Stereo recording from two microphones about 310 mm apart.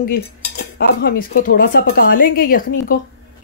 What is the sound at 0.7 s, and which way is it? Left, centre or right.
A woman's voice, left.